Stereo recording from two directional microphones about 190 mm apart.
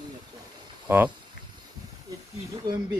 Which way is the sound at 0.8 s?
10° right (ahead or behind).